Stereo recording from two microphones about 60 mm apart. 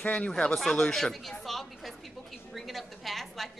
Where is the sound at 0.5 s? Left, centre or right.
Centre.